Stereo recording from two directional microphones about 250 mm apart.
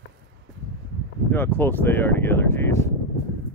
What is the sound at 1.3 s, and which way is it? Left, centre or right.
Speech, centre.